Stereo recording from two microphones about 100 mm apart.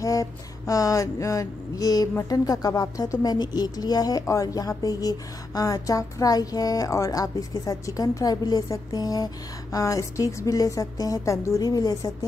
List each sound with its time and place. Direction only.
0.0 s speech: 35° left (ahead or behind)